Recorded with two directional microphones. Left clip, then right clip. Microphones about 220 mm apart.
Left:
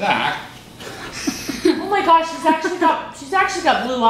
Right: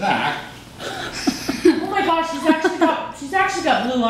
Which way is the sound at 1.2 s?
Centre (ahead or behind).